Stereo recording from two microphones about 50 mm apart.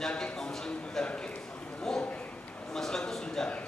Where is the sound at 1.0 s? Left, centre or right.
Left.